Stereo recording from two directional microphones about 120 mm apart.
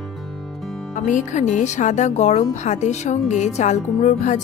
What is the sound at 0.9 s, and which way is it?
Speech, 90° left.